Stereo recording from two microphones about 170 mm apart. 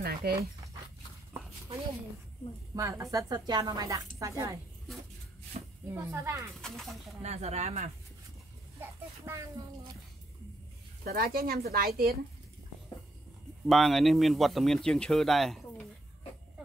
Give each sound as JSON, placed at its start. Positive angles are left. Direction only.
{"t": 0.0, "sound": "speech", "side_deg": -65}
{"t": 2.7, "sound": "a woman's voice", "side_deg": -20}
{"t": 5.5, "sound": "a sound", "side_deg": -45}
{"t": 5.9, "sound": "speech", "side_deg": -15}
{"t": 6.6, "sound": "a man's voice", "side_deg": 0}
{"t": 7.2, "sound": "speech", "side_deg": -40}
{"t": 8.7, "sound": "speech", "side_deg": -15}
{"t": 11.1, "sound": "speech", "side_deg": -60}
{"t": 13.7, "sound": "a man's voice", "side_deg": 0}